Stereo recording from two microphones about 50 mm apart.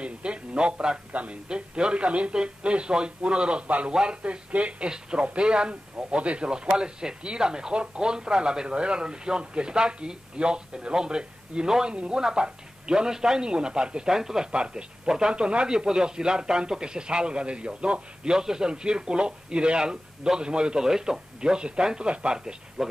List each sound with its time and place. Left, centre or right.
0.0 s speech: right